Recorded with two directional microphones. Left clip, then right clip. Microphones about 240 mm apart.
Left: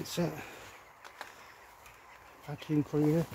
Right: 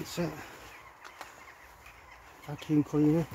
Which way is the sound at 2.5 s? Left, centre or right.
Centre.